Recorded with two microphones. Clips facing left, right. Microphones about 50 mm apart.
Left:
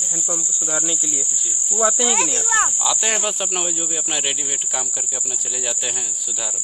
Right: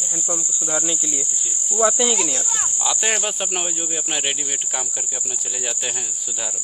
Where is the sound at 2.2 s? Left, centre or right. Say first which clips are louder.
Left 2 dB; left.